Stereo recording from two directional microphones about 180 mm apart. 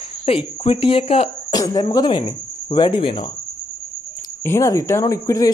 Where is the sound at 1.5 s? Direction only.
20° left (ahead or behind).